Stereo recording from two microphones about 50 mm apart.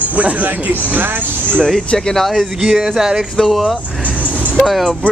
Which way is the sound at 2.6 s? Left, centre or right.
Centre.